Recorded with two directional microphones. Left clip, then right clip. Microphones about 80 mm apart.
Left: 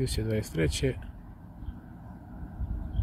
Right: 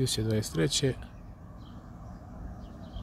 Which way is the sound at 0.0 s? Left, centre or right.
Right.